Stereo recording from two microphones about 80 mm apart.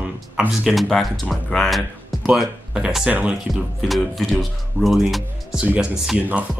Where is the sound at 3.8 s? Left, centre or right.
Centre.